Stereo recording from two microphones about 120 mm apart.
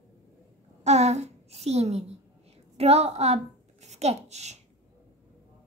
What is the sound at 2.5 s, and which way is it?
A woman's voice, 60° right (ahead or behind).